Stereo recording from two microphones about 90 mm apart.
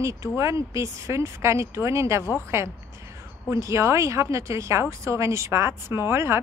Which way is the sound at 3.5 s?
35° right (ahead or behind).